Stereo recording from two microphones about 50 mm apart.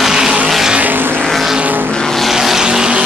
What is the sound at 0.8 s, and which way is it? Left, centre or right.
Vehicle, right.